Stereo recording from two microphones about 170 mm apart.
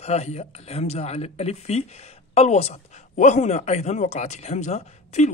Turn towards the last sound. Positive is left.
turn(degrees=40)  # may be behind; listen again after turning